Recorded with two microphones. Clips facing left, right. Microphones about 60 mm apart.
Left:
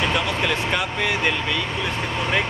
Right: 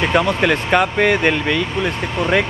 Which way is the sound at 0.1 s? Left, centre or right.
Right.